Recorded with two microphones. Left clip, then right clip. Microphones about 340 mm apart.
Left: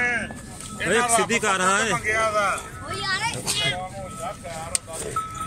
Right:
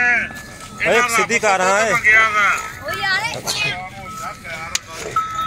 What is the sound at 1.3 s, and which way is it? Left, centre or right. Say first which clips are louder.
Speech: right 6 dB; centre.